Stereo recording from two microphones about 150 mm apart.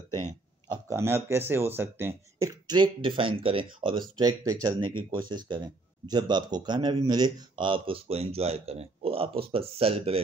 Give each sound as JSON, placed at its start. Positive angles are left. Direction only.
{"t": 0.8, "sound": "speech", "side_deg": -15}
{"t": 4.2, "sound": "speech", "side_deg": -25}